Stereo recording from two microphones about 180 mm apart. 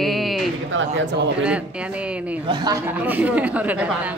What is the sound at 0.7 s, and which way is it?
Speech, 75° right (ahead or behind).